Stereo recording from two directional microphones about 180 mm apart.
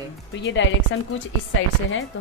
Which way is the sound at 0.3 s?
85° left.